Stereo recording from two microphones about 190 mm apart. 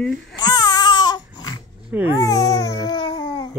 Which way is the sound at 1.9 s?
10° right (ahead or behind).